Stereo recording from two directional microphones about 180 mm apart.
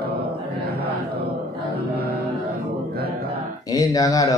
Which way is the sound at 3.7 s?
20° left (ahead or behind).